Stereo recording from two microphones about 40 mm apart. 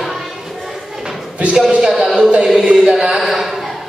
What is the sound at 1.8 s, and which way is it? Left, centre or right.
A man's voice, centre.